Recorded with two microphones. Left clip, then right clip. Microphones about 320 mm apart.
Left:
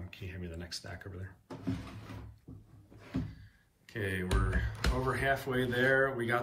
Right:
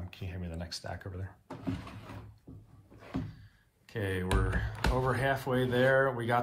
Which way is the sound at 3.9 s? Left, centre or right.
Centre.